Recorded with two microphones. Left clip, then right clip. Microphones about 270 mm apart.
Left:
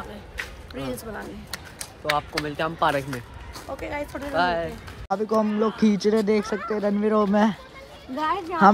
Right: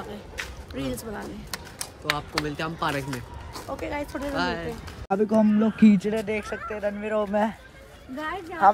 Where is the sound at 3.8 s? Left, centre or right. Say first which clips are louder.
Even; centre.